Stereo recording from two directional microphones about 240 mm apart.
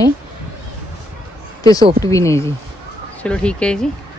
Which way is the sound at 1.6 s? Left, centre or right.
Centre.